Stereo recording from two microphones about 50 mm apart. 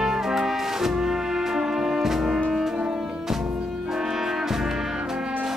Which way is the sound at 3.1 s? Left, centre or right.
Centre.